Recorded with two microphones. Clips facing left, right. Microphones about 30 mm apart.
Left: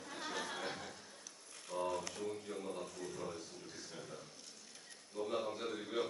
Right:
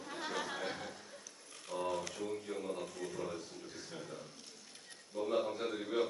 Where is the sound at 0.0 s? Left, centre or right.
Centre.